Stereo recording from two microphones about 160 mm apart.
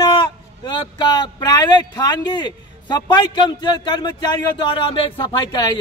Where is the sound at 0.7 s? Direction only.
30° left (ahead or behind).